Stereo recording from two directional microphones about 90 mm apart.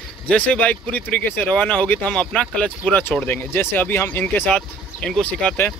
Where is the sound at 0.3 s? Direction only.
15° left (ahead or behind).